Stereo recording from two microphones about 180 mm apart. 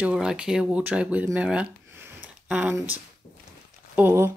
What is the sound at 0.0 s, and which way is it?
Speech, 5° right (ahead or behind).